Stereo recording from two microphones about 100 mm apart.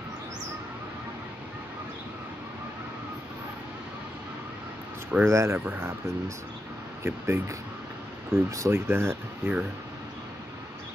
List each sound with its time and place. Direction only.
5.2 s speech: 30° right (ahead or behind)